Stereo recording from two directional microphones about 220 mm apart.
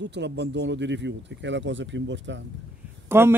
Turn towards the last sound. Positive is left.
turn(degrees=-10)  # may be behind; listen again after turning